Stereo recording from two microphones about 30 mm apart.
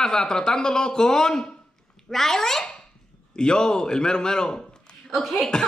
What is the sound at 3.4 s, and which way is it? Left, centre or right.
Speech, left.